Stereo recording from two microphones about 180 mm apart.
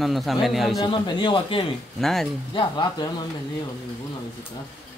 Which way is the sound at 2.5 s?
25° left (ahead or behind).